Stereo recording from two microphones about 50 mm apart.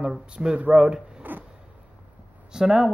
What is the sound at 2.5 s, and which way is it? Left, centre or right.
Speech, centre.